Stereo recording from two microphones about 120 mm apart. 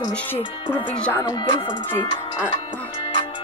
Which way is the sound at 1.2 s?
35° left (ahead or behind).